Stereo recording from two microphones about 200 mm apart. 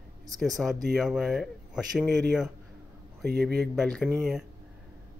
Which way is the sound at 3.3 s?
55° right (ahead or behind).